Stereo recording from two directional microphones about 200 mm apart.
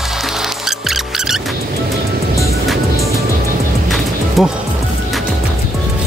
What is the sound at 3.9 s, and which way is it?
Music, centre (ahead or behind).